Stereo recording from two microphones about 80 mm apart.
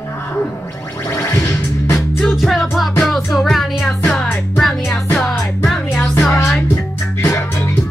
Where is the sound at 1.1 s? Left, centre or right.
Left.